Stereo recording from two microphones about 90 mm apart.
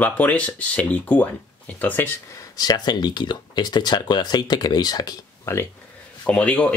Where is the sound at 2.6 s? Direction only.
50° left (ahead or behind).